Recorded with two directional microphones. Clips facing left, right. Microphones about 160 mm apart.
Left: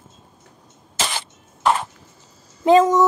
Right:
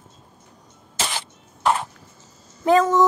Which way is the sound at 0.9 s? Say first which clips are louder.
Left 2 dB; 90° left.